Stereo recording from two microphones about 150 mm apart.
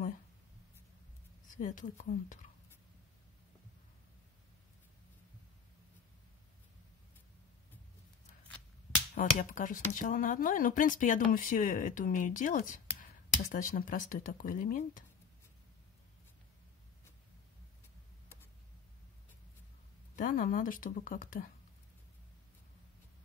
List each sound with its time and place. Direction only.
1.5 s speech: 60° left (ahead or behind)
9.1 s speech: 60° left (ahead or behind)
20.2 s speech: 65° left (ahead or behind)